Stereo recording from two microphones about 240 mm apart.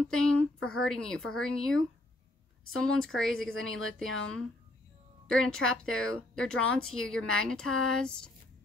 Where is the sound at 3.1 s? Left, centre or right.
Centre.